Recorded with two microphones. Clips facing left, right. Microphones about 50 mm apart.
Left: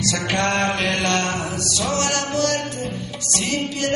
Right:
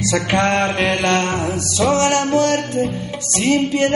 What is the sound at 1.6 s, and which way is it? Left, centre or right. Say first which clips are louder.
Music: right 9 dB; right.